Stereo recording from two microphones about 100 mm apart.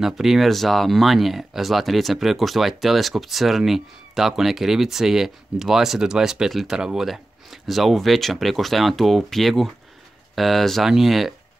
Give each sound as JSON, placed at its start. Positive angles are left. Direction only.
{"t": 0.0, "sound": "speech", "side_deg": -5}